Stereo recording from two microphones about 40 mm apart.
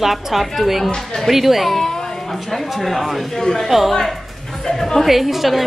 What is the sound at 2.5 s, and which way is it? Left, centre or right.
Speech, centre.